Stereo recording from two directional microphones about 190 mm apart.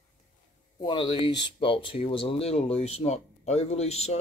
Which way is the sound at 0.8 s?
25° left (ahead or behind).